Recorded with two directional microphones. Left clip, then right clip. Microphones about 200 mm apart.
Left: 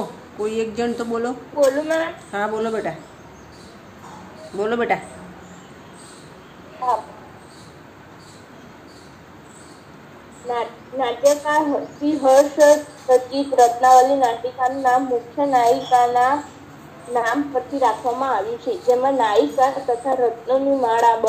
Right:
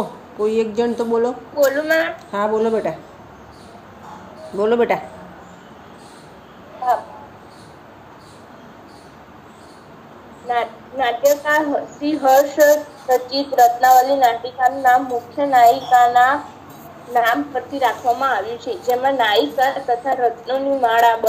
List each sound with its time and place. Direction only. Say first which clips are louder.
0.5 s speech: right 4 dB; 5° right (ahead or behind)
1.6 s a woman's voice: right 2 dB; 30° right (ahead or behind)
2.3 s a woman's voice: right 5 dB; 10° right (ahead or behind)
4.6 s a woman's voice: right 4 dB; 15° right (ahead or behind)
10.5 s a woman's voice: right 4 dB; 30° right (ahead or behind)
12.4 s a woman's voice: left 1 dB; 10° right (ahead or behind)
13.3 s a woman's voice: right 2 dB; 30° right (ahead or behind)